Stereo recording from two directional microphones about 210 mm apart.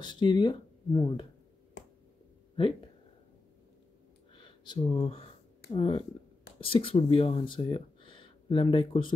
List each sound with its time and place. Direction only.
0.0 s speech: 20° left (ahead or behind)
4.4 s speech: 25° left (ahead or behind)